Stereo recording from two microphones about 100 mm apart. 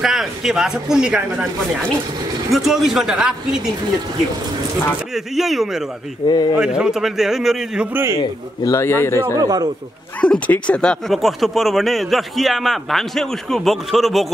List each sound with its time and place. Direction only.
0.0 s speech: 5° right (ahead or behind)
2.5 s speech: 5° right (ahead or behind)
5.1 s speech: centre (ahead or behind)
6.2 s speech: 45° left (ahead or behind)
6.6 s speech: 10° right (ahead or behind)
7.9 s a man's voice: 25° right (ahead or behind)
8.6 s speech: 25° left (ahead or behind)
10.2 s speech: 10° left (ahead or behind)